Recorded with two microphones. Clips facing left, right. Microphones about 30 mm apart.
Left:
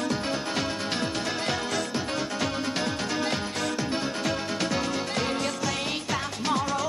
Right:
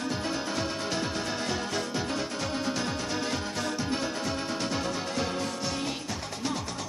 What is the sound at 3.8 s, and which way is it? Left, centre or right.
Music, left.